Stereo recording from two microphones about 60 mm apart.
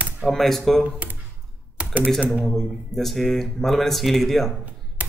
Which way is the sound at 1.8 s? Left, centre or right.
Centre.